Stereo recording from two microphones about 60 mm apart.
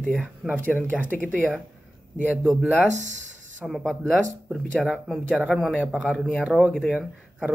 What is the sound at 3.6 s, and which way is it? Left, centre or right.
Speech, centre.